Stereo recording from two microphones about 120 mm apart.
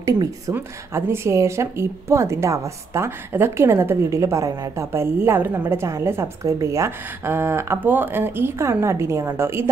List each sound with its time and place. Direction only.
0.0 s speech: 30° right (ahead or behind)